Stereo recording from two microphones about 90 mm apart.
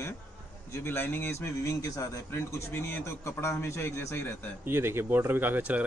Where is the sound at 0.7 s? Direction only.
30° left (ahead or behind).